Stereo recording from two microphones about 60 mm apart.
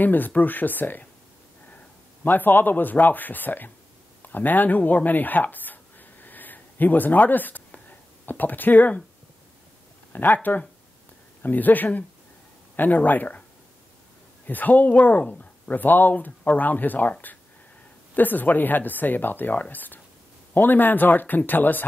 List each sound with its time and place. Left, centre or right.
0.0 s speech: left
2.2 s speech: left
4.2 s a sound: left
8.3 s speech: left
10.1 s speech: left
14.5 s speech: left
18.1 s speech: left